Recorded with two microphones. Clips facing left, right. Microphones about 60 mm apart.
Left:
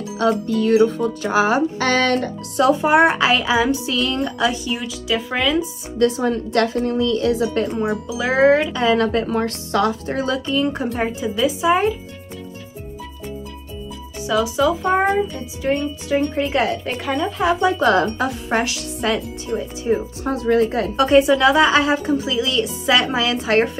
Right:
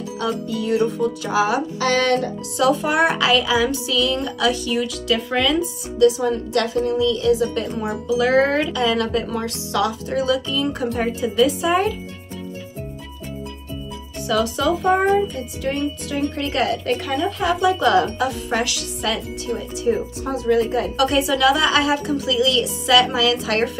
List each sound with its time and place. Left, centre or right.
0.2 s speech: left
4.8 s speech: centre
5.9 s speech: left
7.8 s speech: centre
8.7 s speech: left
11.0 s speech: centre
14.2 s a child's voice: centre
16.1 s a woman's voice: left
16.8 s speech: centre
17.4 s a woman's voice: left
20.2 s speech: left
20.9 s a woman's voice: left